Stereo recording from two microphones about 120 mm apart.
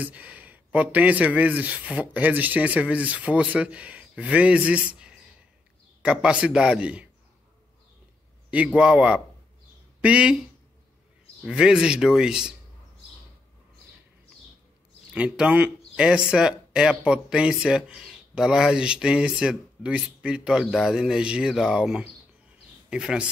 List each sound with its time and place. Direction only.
0.0 s speech: 10° right (ahead or behind)
8.5 s speech: 10° right (ahead or behind)
11.4 s speech: 5° right (ahead or behind)
15.1 s speech: 10° right (ahead or behind)